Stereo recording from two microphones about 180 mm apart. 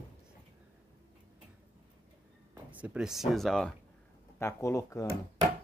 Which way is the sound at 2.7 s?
10° right (ahead or behind).